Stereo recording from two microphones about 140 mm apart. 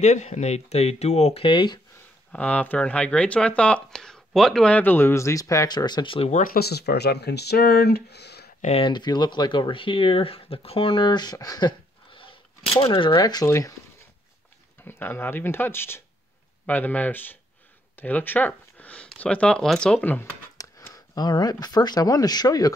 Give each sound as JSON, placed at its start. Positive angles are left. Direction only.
{"t": 0.0, "sound": "speech", "side_deg": 55}
{"t": 2.3, "sound": "speech", "side_deg": 10}
{"t": 6.3, "sound": "speech", "side_deg": 90}
{"t": 8.5, "sound": "speech", "side_deg": 50}
{"t": 8.8, "sound": "speech", "side_deg": 30}
{"t": 14.9, "sound": "speech", "side_deg": 15}
{"t": 20.5, "sound": "speech", "side_deg": 25}